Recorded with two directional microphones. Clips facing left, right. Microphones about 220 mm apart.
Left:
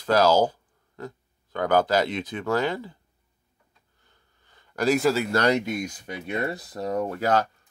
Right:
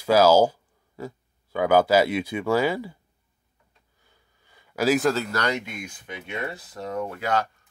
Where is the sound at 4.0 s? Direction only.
10° right (ahead or behind).